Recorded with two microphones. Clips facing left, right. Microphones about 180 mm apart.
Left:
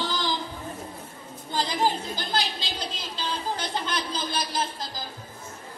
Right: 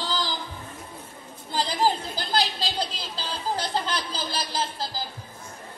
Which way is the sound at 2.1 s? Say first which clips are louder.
Right 2 dB; 35° right (ahead or behind).